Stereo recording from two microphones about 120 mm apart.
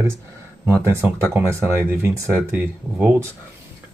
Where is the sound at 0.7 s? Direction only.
20° right (ahead or behind).